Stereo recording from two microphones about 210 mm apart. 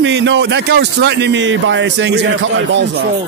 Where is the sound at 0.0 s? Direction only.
55° right (ahead or behind).